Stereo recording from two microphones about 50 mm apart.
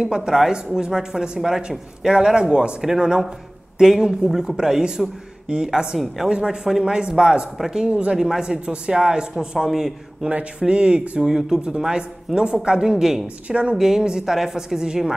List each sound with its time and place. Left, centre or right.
0.0 s speech: centre
5.9 s a woman's voice: centre
7.9 s speech: right
8.2 s speech: centre
9.7 s a woman's voice: centre
10.2 s speech: right
13.5 s speech: right